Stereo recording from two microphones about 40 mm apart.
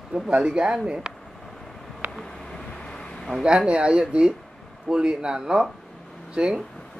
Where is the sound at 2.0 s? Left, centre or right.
Right.